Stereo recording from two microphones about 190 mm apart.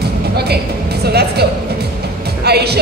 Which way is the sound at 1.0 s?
60° right (ahead or behind).